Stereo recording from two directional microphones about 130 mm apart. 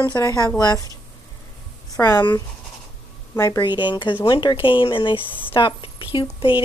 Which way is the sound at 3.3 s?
20° left (ahead or behind).